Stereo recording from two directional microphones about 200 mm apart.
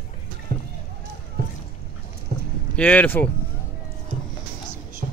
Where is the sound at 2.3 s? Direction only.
50° right (ahead or behind).